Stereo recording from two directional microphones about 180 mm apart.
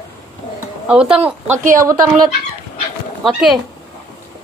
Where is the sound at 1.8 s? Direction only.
20° right (ahead or behind).